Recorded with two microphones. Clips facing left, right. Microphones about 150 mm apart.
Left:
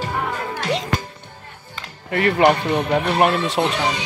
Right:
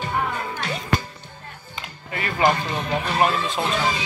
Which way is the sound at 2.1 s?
65° left (ahead or behind).